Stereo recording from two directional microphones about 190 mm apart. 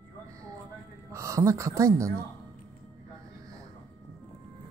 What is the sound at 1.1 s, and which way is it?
Speech, 15° right (ahead or behind).